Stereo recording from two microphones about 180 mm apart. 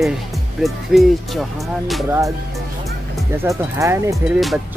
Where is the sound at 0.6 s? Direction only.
Centre (ahead or behind).